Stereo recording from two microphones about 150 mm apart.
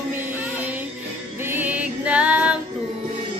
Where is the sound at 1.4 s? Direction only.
15° right (ahead or behind).